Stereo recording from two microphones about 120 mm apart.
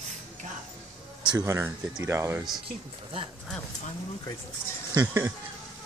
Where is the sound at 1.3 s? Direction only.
25° right (ahead or behind).